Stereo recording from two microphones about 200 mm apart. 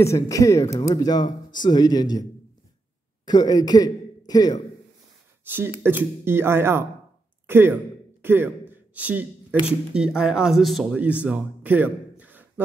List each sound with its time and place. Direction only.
0.0 s speech: 15° left (ahead or behind)
3.3 s a man's voice: 20° left (ahead or behind)
5.4 s speech: 10° right (ahead or behind)
7.4 s a sound: 10° right (ahead or behind)
9.9 s speech: 5° right (ahead or behind)